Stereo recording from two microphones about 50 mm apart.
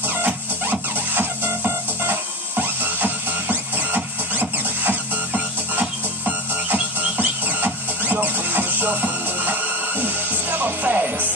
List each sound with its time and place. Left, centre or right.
0.0 s music: right